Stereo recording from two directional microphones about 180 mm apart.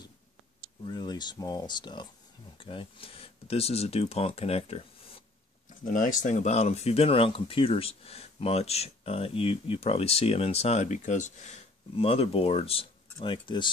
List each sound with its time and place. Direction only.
0.8 s speech: 25° left (ahead or behind)
5.9 s speech: 45° left (ahead or behind); by 13.7 s 25° left (ahead or behind)